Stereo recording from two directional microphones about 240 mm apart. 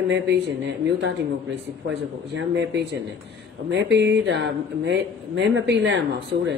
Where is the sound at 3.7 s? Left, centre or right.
Right.